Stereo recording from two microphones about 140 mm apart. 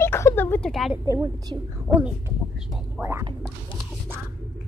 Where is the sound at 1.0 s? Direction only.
25° right (ahead or behind).